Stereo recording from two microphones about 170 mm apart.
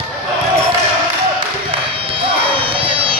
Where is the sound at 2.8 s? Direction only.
30° right (ahead or behind).